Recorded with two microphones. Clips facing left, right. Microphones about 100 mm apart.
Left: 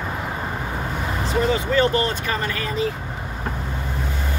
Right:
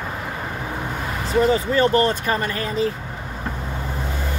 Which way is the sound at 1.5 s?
35° right (ahead or behind).